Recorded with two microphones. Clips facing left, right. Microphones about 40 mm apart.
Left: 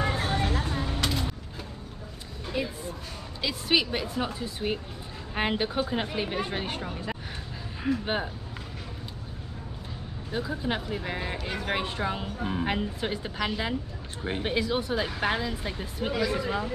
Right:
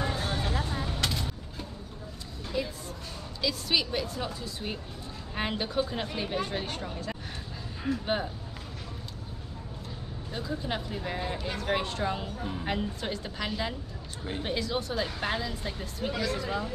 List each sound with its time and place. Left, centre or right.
0.0 s music: left
1.0 s vehicle: centre
2.5 s music: left
3.3 s speech: left
10.3 s speech: centre
12.4 s a woman's voice: left
12.6 s speech: centre
14.2 s a woman's voice: left
14.5 s speech: centre